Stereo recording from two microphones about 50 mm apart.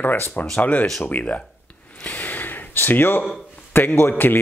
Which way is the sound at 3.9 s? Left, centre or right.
Left.